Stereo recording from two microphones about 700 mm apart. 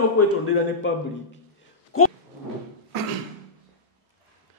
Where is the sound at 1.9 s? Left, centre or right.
Centre.